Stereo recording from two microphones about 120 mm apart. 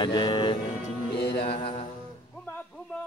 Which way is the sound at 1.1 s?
50° left (ahead or behind).